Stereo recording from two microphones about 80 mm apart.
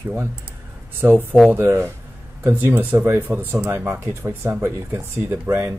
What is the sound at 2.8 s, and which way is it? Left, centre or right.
Speech, right.